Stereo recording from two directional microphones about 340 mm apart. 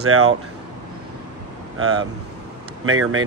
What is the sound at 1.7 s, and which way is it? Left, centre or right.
Speech, right.